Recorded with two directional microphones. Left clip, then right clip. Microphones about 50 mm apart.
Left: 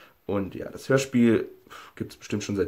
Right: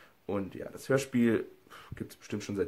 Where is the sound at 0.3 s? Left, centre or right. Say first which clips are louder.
Left 6 dB; right.